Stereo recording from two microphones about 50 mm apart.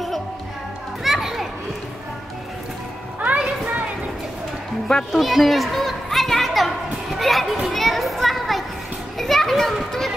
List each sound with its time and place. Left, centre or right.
1.0 s children playing: centre
3.2 s a sound: right
5.1 s children playing: centre